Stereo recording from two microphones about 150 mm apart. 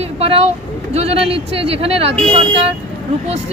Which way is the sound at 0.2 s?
40° right (ahead or behind).